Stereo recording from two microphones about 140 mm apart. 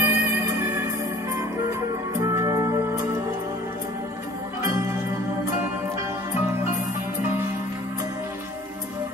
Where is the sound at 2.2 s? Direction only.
20° right (ahead or behind).